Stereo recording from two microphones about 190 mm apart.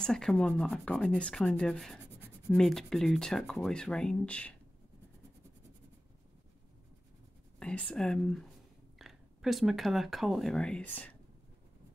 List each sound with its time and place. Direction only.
0.0 s speech: 5° left (ahead or behind)
7.5 s speech: 5° left (ahead or behind)